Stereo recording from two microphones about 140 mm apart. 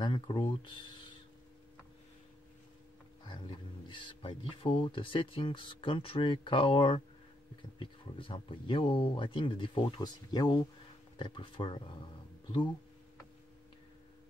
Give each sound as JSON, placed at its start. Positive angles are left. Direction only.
{"t": 0.0, "sound": "speech", "side_deg": 35}
{"t": 3.3, "sound": "speech", "side_deg": 35}